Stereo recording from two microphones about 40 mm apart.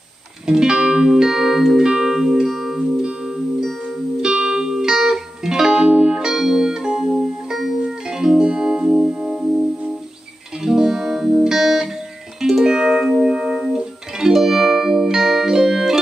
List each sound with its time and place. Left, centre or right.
0.5 s music: centre
4.3 s music: centre
12.6 s music: centre